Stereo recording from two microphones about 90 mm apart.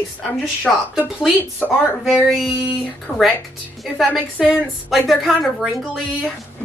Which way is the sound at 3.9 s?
5° right (ahead or behind).